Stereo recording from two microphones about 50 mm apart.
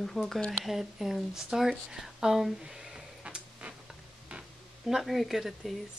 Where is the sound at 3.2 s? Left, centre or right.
Right.